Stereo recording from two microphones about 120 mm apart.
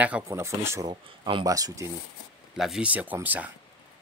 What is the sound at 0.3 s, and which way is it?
Speech, 25° right (ahead or behind).